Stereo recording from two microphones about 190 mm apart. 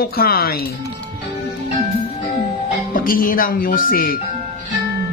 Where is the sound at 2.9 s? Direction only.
50° left (ahead or behind).